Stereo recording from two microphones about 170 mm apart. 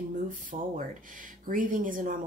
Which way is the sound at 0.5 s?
35° right (ahead or behind).